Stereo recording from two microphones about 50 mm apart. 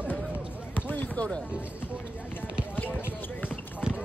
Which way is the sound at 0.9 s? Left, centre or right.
Left.